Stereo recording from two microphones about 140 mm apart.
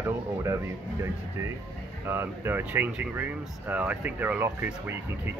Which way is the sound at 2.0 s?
15° right (ahead or behind).